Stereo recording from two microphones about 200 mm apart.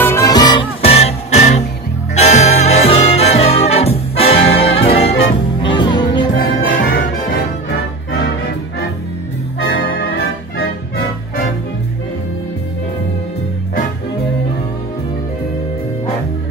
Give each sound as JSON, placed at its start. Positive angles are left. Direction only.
{"t": 0.0, "sound": "music", "side_deg": 15}
{"t": 6.3, "sound": "music", "side_deg": 45}